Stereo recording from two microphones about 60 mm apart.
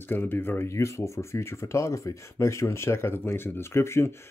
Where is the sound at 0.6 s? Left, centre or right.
Left.